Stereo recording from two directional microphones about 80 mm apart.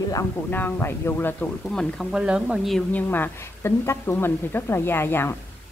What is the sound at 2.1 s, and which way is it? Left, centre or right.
Speech, centre.